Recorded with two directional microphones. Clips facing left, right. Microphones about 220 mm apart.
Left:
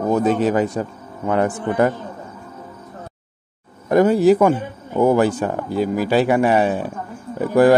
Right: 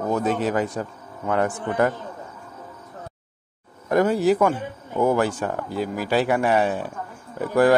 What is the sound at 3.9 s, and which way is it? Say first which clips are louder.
Speech: left 5 dB; 20° left (ahead or behind).